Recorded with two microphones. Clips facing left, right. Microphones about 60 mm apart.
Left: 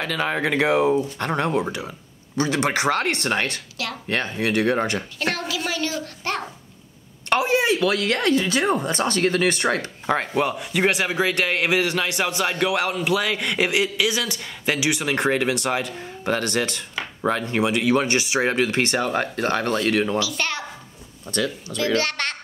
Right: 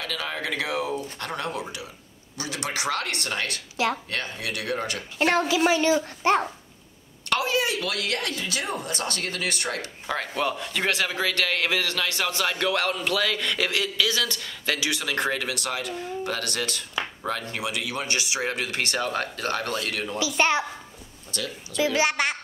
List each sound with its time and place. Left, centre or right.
0.0 s speech: left
3.8 s a child's voice: right
4.1 s speech: left
5.2 s a child's voice: right
7.2 s speech: left
10.4 s a man's voice: centre; by 19.8 s left
20.2 s a child's voice: right
21.7 s a child's voice: centre